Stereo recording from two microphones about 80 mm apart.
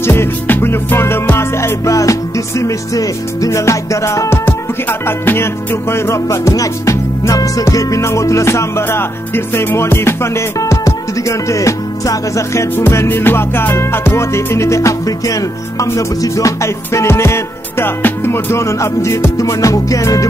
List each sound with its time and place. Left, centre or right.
0.0 s music: left